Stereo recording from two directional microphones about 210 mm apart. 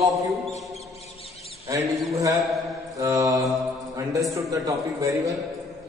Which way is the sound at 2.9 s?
15° right (ahead or behind).